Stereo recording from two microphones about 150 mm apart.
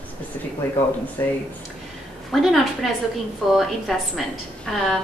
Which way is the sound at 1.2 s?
20° left (ahead or behind).